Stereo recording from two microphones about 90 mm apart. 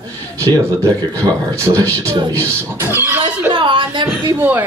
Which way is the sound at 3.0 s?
25° right (ahead or behind).